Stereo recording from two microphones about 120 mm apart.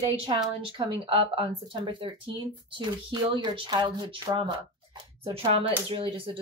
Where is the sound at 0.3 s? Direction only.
40° right (ahead or behind).